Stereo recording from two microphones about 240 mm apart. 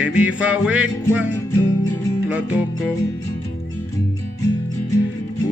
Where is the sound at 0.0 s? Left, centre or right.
Centre.